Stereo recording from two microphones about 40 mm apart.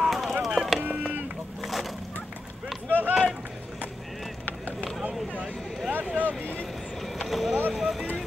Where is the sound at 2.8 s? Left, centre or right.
Right.